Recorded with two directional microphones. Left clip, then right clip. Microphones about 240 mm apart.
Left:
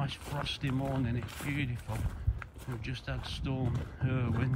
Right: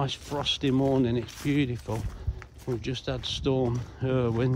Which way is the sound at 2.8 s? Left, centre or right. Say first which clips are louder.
Right 8 dB; right.